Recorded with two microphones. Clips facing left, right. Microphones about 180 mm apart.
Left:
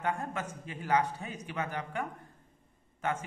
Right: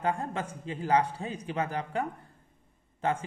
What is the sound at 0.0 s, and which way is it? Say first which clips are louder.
A man's voice: right 3 dB; 30° right (ahead or behind).